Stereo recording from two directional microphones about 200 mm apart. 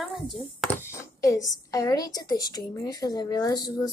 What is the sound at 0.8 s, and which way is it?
A woman's voice, 15° left (ahead or behind).